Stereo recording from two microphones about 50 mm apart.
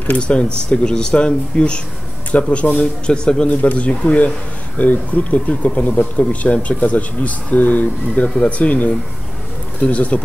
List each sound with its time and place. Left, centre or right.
0.2 s speech: centre